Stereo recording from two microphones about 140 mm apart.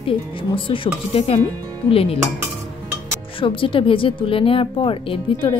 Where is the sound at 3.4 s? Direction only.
40° left (ahead or behind).